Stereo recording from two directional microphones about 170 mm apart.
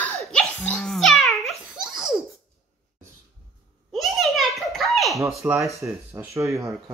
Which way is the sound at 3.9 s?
Centre (ahead or behind).